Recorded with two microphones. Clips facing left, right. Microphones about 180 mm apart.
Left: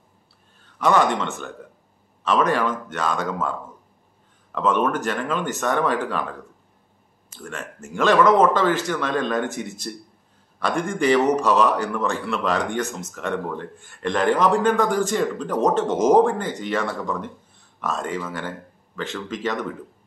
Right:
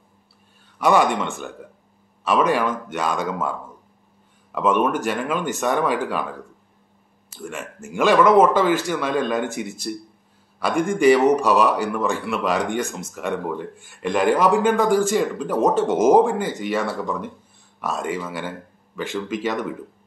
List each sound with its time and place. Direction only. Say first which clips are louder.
0.7 s a man's voice: right 1 dB; 10° right (ahead or behind)
7.3 s a man's voice: right 2 dB; 10° right (ahead or behind)